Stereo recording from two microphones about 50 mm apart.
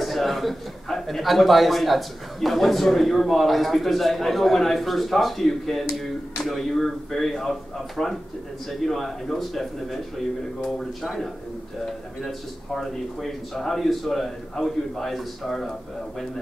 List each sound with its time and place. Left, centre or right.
0.0 s a man's voice: centre